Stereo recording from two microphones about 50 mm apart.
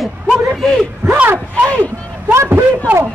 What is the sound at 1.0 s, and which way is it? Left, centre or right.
Speech, right.